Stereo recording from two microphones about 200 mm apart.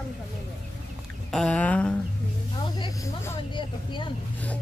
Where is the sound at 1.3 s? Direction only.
5° left (ahead or behind).